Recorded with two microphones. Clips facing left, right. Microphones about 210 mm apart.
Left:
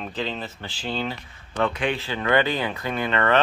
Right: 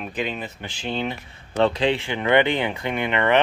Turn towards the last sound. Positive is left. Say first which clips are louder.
# right 1 dB
turn(degrees=-15)  # may be behind; listen again after turning